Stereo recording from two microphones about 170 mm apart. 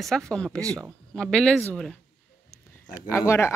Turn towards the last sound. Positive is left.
turn(degrees=15)  # may be behind; listen again after turning